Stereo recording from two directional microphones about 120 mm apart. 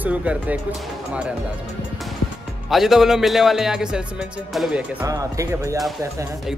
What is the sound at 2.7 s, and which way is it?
Speech, 5° right (ahead or behind).